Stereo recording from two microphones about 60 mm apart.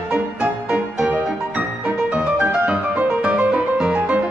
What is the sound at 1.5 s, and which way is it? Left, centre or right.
Music, right.